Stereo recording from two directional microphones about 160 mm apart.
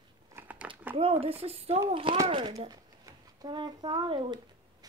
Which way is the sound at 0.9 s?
35° right (ahead or behind).